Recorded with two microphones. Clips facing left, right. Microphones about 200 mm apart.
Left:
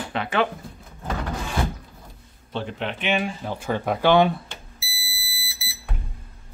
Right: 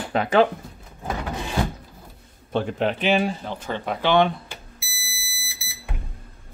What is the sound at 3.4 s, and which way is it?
Speech, 10° left (ahead or behind).